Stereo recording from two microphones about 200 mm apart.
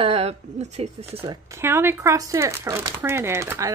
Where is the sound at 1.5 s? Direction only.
10° right (ahead or behind).